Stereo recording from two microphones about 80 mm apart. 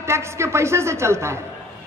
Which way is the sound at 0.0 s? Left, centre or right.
Right.